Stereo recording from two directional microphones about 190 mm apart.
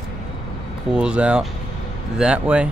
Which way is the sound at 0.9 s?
5° right (ahead or behind).